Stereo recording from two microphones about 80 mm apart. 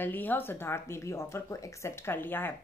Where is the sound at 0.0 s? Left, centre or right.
Left.